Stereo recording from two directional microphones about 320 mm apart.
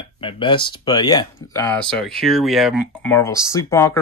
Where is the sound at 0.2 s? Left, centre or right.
Centre.